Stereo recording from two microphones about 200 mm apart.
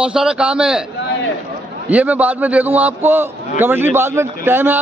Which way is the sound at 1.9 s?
5° right (ahead or behind).